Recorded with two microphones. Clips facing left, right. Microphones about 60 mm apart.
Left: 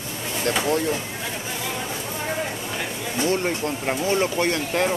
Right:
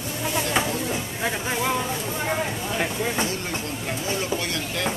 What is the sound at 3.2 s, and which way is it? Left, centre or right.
Speech, left.